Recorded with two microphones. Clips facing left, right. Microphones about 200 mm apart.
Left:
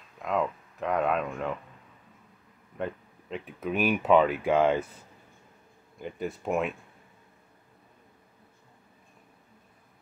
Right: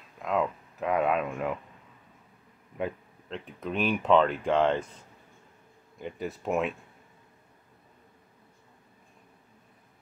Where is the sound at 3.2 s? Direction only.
5° left (ahead or behind).